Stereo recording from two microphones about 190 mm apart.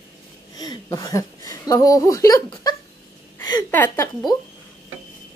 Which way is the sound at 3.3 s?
20° left (ahead or behind).